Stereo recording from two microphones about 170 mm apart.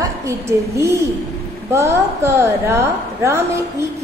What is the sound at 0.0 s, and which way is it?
A woman's voice, 15° right (ahead or behind).